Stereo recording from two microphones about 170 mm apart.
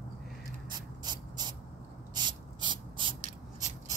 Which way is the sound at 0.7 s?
25° right (ahead or behind).